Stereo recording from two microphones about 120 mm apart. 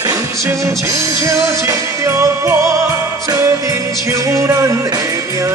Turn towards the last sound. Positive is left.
turn(degrees=-30)  # may be behind; listen again after turning